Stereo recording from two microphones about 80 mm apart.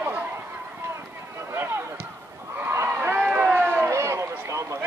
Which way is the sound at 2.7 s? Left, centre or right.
Right.